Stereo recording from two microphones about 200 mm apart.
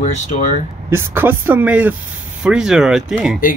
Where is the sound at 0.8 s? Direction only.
10° right (ahead or behind).